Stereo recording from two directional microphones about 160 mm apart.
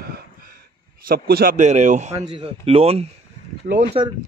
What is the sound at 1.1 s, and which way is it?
Speech, 65° right (ahead or behind).